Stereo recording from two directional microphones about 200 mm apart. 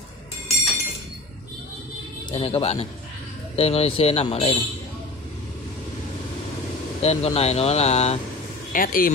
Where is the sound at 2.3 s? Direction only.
30° left (ahead or behind).